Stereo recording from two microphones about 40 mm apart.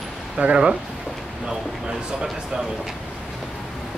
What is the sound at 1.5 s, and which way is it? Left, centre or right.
Speech, centre.